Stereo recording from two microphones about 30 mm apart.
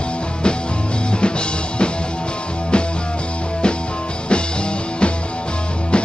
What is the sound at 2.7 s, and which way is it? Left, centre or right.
Music, left.